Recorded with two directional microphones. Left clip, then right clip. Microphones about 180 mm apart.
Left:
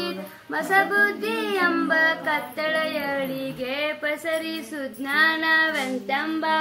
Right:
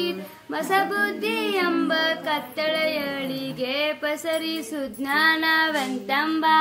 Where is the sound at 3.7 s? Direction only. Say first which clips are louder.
Right 1 dB; 65° right (ahead or behind).